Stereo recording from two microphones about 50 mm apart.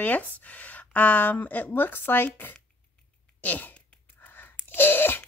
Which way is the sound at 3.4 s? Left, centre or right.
Left.